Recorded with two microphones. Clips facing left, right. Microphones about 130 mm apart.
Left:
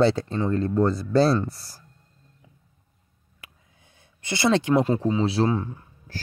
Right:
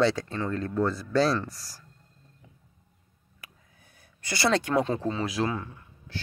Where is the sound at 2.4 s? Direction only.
15° left (ahead or behind).